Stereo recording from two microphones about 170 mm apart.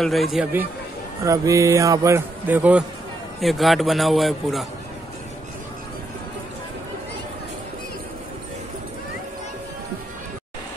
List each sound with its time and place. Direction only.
0.0 s a man's voice: centre (ahead or behind)
1.2 s a man's voice: 20° right (ahead or behind); by 4.6 s centre (ahead or behind)